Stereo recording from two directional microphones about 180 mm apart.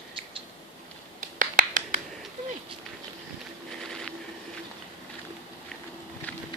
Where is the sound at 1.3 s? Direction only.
50° right (ahead or behind).